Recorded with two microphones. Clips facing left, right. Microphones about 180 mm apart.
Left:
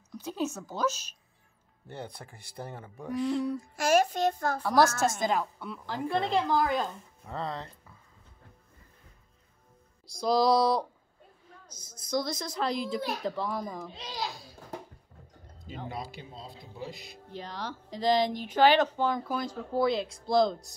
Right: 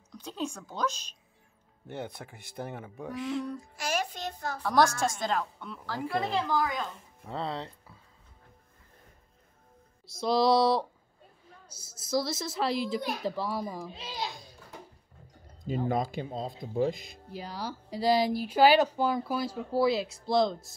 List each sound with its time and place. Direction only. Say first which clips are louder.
0.1 s a woman's voice: left 3 dB; 10° left (ahead or behind)
2.2 s a child's voice: right 3 dB; 5° right (ahead or behind)
3.7 s child singing: left 9 dB; 50° left (ahead or behind)
4.6 s a woman's voice: left 1 dB; 5° left (ahead or behind)
5.9 s speech: left 1 dB; 20° left (ahead or behind)
7.2 s speech: right 1 dB; 20° right (ahead or behind)
10.1 s a child's voice: even; centre (ahead or behind)
15.9 s speech: right 10 dB; 50° right (ahead or behind)
17.3 s speech: right 1 dB; 10° right (ahead or behind)